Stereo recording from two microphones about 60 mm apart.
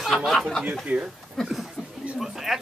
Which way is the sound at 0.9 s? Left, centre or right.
Right.